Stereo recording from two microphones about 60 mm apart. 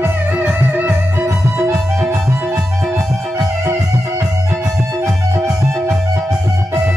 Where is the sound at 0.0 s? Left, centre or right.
Right.